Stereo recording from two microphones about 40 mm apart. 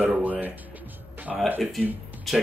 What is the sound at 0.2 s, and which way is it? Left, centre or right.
Music, right.